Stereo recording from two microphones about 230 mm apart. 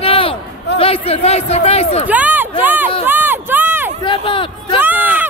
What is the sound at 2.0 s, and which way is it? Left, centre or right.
Speech, centre.